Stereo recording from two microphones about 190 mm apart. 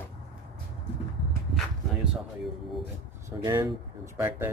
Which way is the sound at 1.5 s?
5° right (ahead or behind).